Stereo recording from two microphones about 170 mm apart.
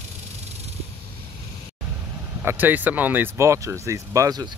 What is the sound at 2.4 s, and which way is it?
Speech, 10° right (ahead or behind).